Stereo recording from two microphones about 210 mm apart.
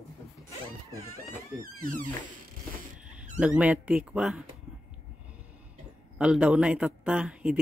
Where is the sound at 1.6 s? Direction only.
40° right (ahead or behind).